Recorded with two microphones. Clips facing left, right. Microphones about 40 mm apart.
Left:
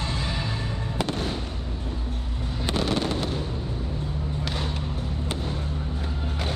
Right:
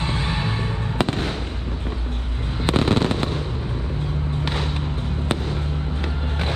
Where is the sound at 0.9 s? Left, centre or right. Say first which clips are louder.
Right 5 dB; right.